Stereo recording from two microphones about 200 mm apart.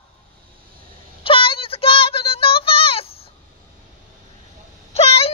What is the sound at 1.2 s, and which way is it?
Child singing, 25° left (ahead or behind).